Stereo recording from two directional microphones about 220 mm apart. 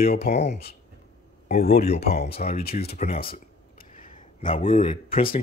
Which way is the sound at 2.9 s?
35° left (ahead or behind).